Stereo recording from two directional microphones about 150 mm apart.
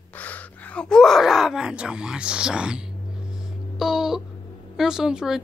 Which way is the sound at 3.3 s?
Centre (ahead or behind).